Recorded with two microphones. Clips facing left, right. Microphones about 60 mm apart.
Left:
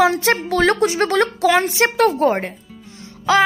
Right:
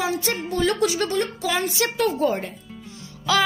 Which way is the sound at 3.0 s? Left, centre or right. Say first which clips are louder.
Left 6 dB; left.